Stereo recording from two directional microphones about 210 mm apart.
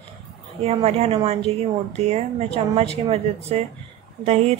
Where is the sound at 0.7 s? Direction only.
30° right (ahead or behind).